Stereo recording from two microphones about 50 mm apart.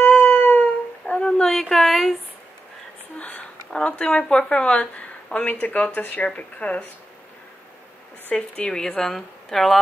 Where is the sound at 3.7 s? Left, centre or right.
Left.